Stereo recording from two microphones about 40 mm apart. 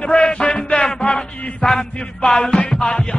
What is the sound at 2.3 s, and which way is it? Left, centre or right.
Music, left.